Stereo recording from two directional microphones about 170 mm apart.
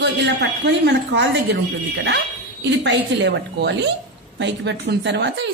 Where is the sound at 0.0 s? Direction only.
90° right.